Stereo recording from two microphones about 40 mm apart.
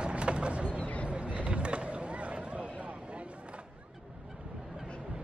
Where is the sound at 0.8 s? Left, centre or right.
Left.